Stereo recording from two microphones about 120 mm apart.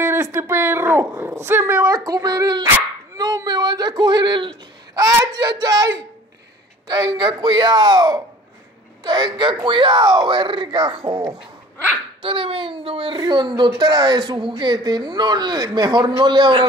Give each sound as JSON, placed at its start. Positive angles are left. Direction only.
{"t": 0.0, "sound": "a child's voice", "side_deg": -20}
{"t": 13.2, "sound": "speech", "side_deg": -35}